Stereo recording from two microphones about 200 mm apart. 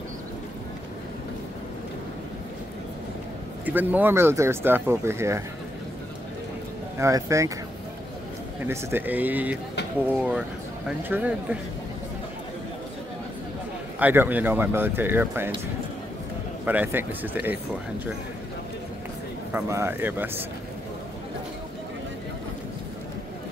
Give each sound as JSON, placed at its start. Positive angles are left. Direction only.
{"t": 3.6, "sound": "speech", "side_deg": -10}
{"t": 7.0, "sound": "speech", "side_deg": -15}
{"t": 8.6, "sound": "speech", "side_deg": -10}
{"t": 13.9, "sound": "speech", "side_deg": -10}
{"t": 16.6, "sound": "speech", "side_deg": -10}
{"t": 19.5, "sound": "speech", "side_deg": -10}